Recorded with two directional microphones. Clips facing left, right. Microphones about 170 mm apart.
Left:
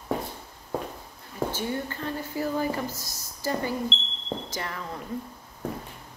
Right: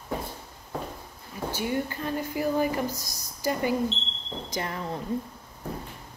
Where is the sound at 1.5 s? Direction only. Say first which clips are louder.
Right 2 dB; 15° right (ahead or behind).